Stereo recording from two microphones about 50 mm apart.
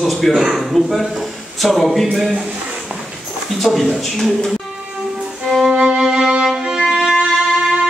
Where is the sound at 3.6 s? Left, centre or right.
Centre.